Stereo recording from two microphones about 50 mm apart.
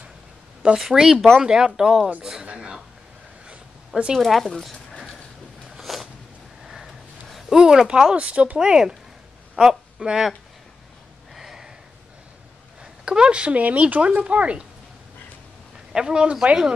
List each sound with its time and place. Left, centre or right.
0.7 s speech: centre
2.4 s a sound: right
4.1 s speech: centre
5.8 s a sound: centre
7.5 s speech: centre
8.5 s speech: centre
11.3 s a sound: centre
12.8 s speech: centre
15.9 s speech: centre